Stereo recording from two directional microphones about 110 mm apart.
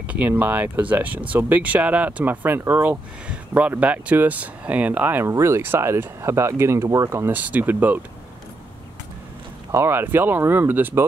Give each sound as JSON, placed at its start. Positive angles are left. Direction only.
{"t": 0.0, "sound": "speech", "side_deg": -15}
{"t": 9.7, "sound": "speech", "side_deg": -20}